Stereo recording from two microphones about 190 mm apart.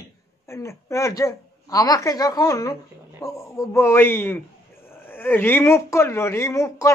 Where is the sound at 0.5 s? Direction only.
15° left (ahead or behind).